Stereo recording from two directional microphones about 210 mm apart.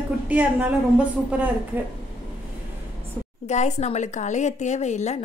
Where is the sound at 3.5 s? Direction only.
35° left (ahead or behind).